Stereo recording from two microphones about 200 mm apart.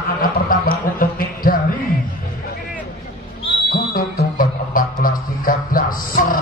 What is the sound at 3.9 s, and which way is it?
Music, 45° left (ahead or behind).